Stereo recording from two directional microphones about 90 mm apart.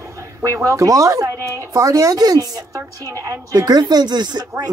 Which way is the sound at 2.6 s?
30° right (ahead or behind).